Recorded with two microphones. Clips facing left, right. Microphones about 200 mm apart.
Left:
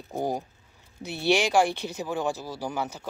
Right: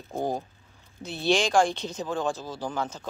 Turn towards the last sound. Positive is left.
turn(degrees=10)  # may be behind; listen again after turning